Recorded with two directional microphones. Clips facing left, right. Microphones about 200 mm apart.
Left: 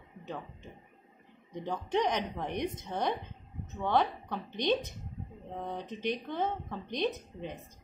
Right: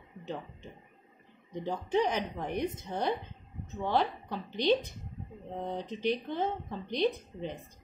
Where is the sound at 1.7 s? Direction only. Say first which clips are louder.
Right 1 dB; 10° right (ahead or behind).